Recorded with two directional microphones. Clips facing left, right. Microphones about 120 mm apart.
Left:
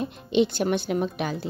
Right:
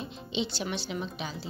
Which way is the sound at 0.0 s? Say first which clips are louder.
Left 11 dB; 55° left (ahead or behind).